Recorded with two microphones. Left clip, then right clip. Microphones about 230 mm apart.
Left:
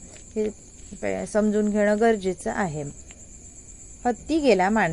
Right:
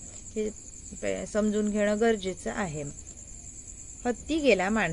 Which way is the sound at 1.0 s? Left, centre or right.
Centre.